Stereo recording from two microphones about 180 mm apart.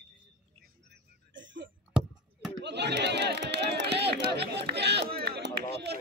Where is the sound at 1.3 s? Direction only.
90° right.